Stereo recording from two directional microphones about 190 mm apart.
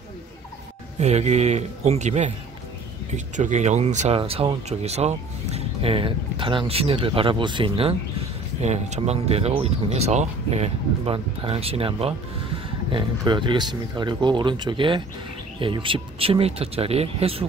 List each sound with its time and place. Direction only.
0.9 s speech: 35° right (ahead or behind)
3.3 s speech: 40° right (ahead or behind)